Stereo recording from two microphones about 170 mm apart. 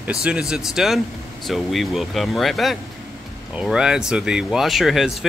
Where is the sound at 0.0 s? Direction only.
5° right (ahead or behind).